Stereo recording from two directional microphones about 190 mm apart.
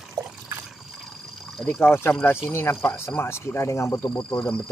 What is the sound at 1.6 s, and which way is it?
Speech, centre (ahead or behind).